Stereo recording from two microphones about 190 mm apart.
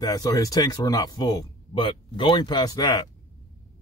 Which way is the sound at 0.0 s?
20° left (ahead or behind).